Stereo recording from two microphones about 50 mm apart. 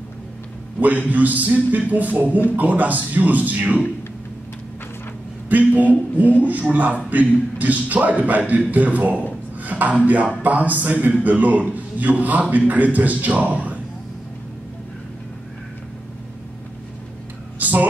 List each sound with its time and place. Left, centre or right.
0.7 s a man's voice: right
5.5 s a man's voice: right
17.6 s a sound: right